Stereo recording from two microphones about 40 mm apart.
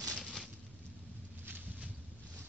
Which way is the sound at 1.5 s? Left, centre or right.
Right.